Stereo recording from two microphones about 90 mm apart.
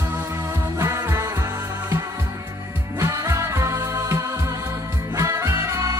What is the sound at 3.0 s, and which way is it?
Music, 35° right (ahead or behind).